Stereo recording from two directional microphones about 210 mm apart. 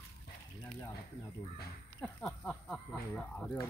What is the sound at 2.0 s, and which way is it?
Speech, 5° left (ahead or behind).